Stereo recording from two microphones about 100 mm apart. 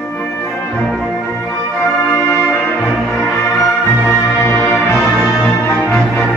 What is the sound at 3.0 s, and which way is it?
Music, centre (ahead or behind).